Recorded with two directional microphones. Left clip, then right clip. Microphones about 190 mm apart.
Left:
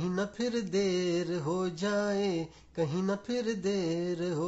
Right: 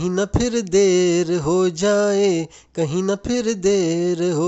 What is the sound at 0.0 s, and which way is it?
Mantra, 45° right (ahead or behind).